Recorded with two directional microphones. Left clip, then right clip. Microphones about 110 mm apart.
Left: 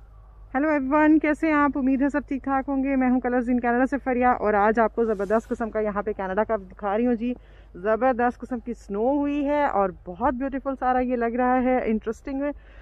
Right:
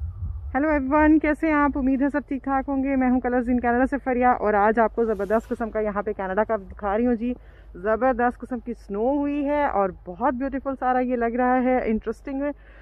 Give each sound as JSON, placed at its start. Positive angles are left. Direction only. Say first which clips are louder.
{"t": 0.5, "sound": "a man's voice", "louder": "right 1 dB", "side_deg": 10}
{"t": 5.0, "sound": "speech", "louder": "even", "side_deg": 20}